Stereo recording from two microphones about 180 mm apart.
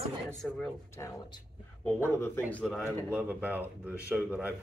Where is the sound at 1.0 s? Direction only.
15° left (ahead or behind).